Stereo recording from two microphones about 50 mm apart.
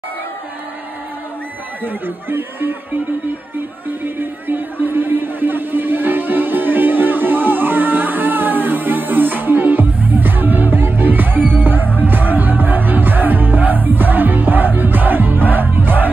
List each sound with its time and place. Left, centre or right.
1.9 s speech: right
4.5 s speech: right
12.0 s music: right